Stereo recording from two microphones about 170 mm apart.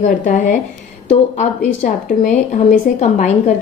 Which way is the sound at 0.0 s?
45° left (ahead or behind).